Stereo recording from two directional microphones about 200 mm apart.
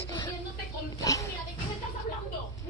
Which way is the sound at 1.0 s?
15° left (ahead or behind).